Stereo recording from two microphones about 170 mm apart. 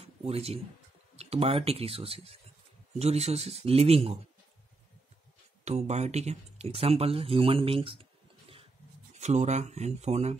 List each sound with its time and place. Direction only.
0.0 s speech: 35° right (ahead or behind)
5.7 s speech: 40° right (ahead or behind)